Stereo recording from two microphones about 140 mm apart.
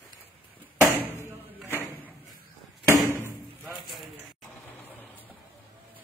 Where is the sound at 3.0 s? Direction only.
15° right (ahead or behind).